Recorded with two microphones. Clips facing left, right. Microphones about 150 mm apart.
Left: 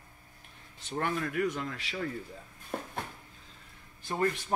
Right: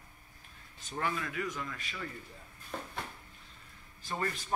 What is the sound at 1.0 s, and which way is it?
Speech, 55° left (ahead or behind).